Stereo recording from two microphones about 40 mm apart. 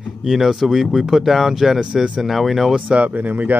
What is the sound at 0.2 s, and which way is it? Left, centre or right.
Speech, centre.